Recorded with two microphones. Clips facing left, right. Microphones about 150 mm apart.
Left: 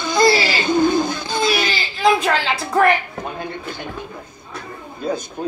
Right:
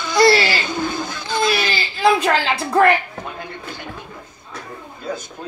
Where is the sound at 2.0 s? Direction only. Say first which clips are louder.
Right 1 dB; 30° right (ahead or behind).